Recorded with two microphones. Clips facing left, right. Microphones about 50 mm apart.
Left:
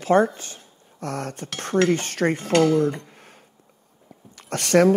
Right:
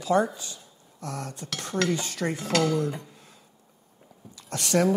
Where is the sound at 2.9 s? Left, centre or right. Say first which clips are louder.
Left 2 dB; left.